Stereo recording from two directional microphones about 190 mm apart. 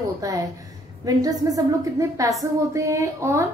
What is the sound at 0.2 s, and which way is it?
A woman's voice, 15° right (ahead or behind).